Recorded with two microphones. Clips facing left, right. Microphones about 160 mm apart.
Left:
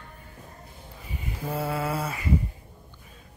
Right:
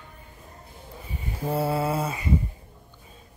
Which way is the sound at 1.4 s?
30° right (ahead or behind).